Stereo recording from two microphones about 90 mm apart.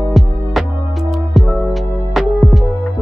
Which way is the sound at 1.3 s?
Centre (ahead or behind).